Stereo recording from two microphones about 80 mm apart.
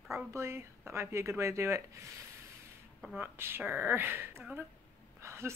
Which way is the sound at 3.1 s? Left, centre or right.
Right.